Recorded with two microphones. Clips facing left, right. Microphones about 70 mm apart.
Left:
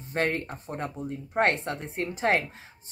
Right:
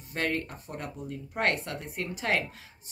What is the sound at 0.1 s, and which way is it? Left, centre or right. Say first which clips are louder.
Speech: left 3 dB; left.